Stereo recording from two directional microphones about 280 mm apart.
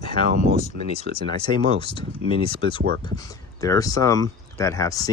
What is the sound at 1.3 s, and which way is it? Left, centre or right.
Speech, centre.